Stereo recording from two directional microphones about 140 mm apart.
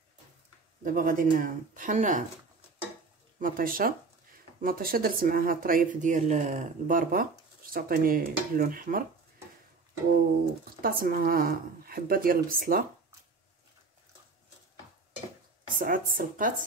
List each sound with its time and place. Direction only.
0.8 s speech: 75° right (ahead or behind)
3.3 s a woman's voice: 80° right
10.8 s a woman's voice: 90° right
15.8 s speech: 75° right (ahead or behind)